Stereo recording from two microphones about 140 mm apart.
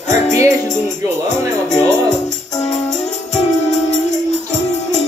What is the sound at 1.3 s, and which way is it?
Speech, 55° left (ahead or behind).